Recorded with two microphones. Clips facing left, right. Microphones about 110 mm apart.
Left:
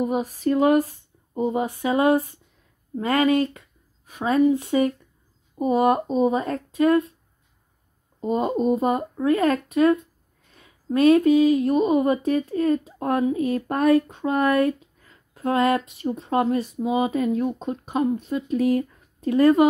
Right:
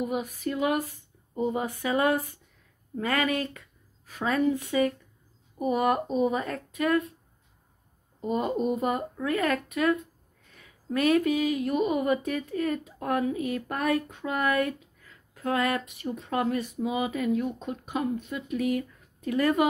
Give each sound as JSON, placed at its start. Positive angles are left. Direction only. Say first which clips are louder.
{"t": 0.0, "sound": "speech", "louder": "left 6 dB", "side_deg": 35}
{"t": 1.4, "sound": "speech", "louder": "left 5 dB", "side_deg": 25}
{"t": 8.2, "sound": "speech", "louder": "left 5 dB", "side_deg": 25}